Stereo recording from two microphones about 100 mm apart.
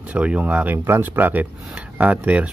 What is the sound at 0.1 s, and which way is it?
Speech, 15° right (ahead or behind).